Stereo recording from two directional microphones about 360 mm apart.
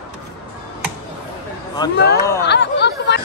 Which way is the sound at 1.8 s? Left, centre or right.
Centre.